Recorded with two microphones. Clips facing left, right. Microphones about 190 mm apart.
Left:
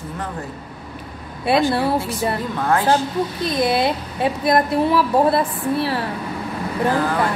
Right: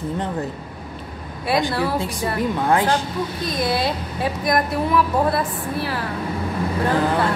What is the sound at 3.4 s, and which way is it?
A woman's voice, 25° left (ahead or behind).